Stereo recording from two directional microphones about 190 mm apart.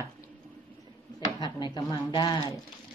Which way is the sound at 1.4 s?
20° left (ahead or behind).